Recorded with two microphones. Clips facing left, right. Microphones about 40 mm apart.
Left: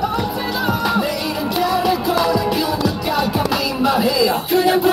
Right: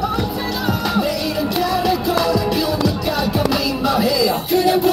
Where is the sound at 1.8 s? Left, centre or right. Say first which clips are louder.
Even; left.